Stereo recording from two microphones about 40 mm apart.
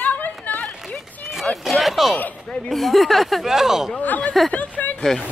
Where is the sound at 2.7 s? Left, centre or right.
Centre.